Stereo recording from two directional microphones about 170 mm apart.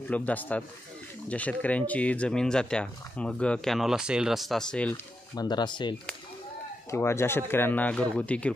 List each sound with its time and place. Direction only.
0.1 s speech: 10° left (ahead or behind)
5.3 s speech: 25° left (ahead or behind)
6.9 s speech: 15° left (ahead or behind)